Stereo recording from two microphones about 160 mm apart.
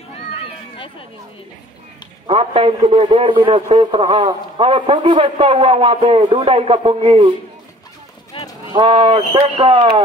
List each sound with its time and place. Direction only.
2.2 s a man's voice: 35° right (ahead or behind)
8.3 s clip-clop: 35° left (ahead or behind)
8.7 s a man's voice: 30° right (ahead or behind)